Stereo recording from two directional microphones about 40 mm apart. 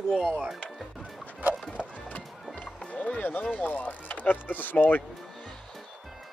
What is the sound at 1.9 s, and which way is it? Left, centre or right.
Music, left.